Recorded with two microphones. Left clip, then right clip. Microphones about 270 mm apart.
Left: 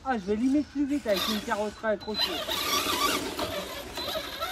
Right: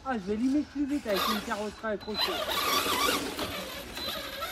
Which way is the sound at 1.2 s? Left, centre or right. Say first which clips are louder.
Right 1 dB; centre.